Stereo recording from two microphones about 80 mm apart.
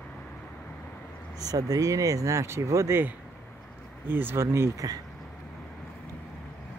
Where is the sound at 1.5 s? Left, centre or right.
Right.